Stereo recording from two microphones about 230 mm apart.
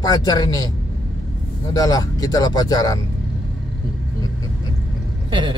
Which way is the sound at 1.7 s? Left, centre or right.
Centre.